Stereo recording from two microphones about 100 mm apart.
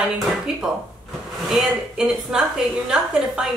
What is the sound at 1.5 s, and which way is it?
A woman's voice, centre (ahead or behind).